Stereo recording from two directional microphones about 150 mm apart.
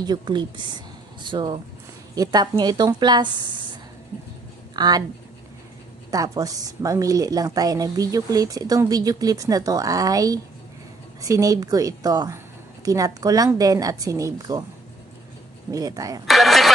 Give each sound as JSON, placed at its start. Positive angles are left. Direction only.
{"t": 0.0, "sound": "a woman's voice", "side_deg": -30}
{"t": 4.7, "sound": "a woman's voice", "side_deg": -25}
{"t": 6.0, "sound": "a woman's voice", "side_deg": -25}
{"t": 15.7, "sound": "a woman's voice", "side_deg": -25}
{"t": 16.3, "sound": "vehicle", "side_deg": 0}